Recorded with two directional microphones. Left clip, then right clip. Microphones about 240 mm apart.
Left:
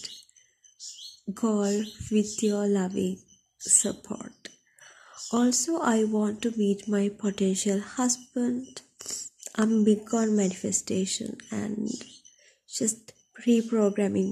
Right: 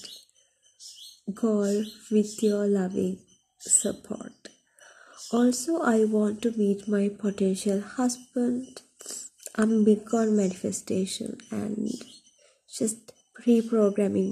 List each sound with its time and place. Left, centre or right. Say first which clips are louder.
1.2 s speech: right 1 dB; centre